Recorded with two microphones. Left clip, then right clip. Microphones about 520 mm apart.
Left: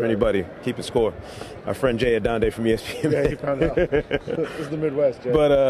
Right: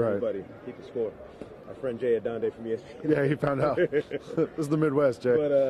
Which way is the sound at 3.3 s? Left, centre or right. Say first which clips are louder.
Left 2 dB; right.